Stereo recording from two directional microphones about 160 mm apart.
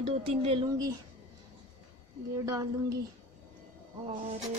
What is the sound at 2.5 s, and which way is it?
Speech, 20° right (ahead or behind).